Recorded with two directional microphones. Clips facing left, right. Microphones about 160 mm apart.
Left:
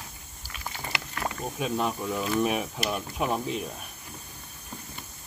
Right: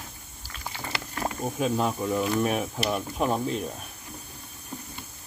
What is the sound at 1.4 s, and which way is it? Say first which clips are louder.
Speech: right 3 dB; centre (ahead or behind).